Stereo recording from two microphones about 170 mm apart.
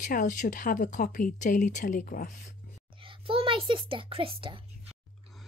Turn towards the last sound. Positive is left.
turn(degrees=-30)  # may be behind; listen again after turning